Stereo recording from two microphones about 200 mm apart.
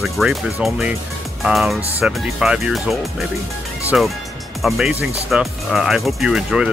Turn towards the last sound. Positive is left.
turn(degrees=-5)  # may be behind; listen again after turning